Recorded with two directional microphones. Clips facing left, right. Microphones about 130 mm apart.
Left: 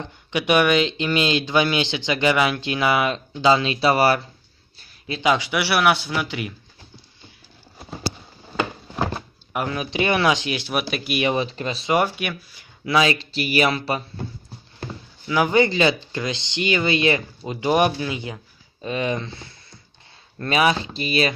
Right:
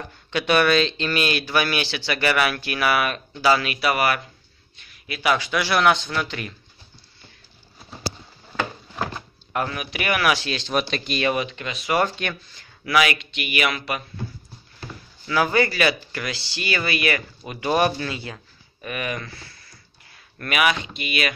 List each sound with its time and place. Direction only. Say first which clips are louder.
0.0 s speech: left 1 dB; 15° left (ahead or behind)
9.5 s speech: even; 15° left (ahead or behind)
9.8 s speech: left 4 dB; 25° left (ahead or behind)
11.3 s speech: left 3 dB; 35° left (ahead or behind)
11.9 s speech: left 1 dB; 10° left (ahead or behind)
12.8 s speech: left 1 dB; 25° left (ahead or behind)
14.9 s speech: left 2 dB; 20° left (ahead or behind)